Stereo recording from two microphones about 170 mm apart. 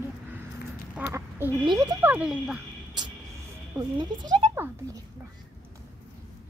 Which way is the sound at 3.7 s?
25° right (ahead or behind).